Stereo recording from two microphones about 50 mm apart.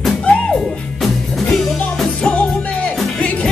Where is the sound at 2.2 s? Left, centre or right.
Left.